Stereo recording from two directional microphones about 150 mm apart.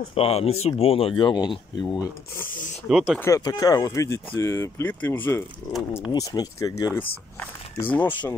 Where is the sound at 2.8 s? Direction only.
5° right (ahead or behind).